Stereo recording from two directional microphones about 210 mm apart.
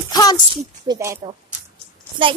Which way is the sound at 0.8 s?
15° right (ahead or behind).